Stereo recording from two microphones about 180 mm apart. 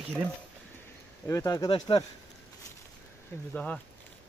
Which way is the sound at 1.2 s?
15° left (ahead or behind).